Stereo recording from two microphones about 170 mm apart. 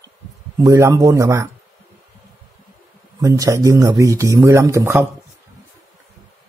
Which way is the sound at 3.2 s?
20° right (ahead or behind).